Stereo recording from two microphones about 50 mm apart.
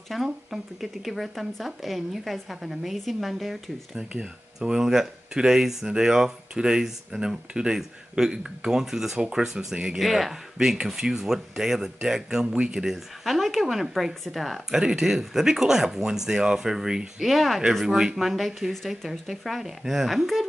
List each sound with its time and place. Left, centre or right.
0.1 s speech: centre
3.9 s speech: centre
17.2 s speech: centre